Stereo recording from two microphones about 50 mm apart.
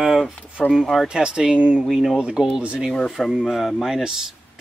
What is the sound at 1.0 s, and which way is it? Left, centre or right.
Speech, centre.